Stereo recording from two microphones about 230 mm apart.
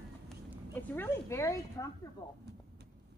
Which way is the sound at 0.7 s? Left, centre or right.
Centre.